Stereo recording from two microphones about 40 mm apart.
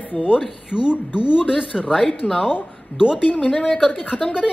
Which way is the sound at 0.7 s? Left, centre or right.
Right.